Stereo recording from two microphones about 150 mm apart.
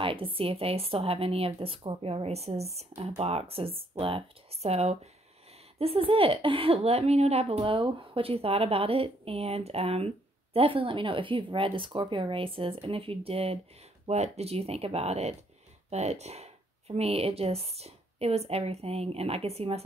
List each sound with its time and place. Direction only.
0.0 s speech: 35° right (ahead or behind)